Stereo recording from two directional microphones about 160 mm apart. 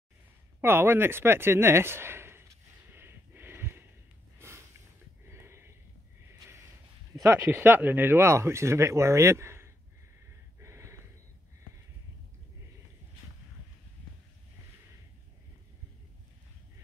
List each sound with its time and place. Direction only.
0.6 s a sound: 15° right (ahead or behind)
5.3 s sniff: 15° right (ahead or behind)
7.2 s speech: 15° right (ahead or behind)
10.6 s snort: 15° right (ahead or behind)